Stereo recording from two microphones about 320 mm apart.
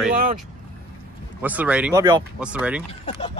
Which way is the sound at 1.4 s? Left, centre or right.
Centre.